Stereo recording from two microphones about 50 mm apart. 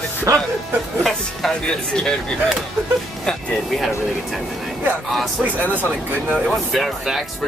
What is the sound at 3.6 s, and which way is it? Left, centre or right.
Speech, centre.